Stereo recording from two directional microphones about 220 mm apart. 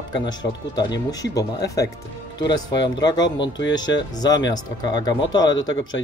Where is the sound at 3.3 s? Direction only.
55° left (ahead or behind).